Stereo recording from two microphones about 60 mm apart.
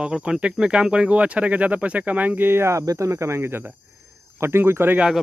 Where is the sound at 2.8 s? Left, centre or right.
Right.